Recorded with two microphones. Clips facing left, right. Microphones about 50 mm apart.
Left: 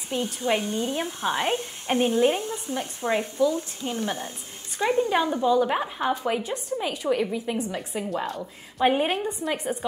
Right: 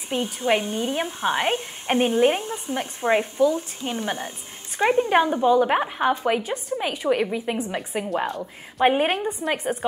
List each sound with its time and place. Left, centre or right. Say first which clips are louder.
0.1 s a woman's voice: right 3 dB; right
8.3 s a woman's voice: right 3 dB; centre
9.5 s a woman's voice: right 5 dB; right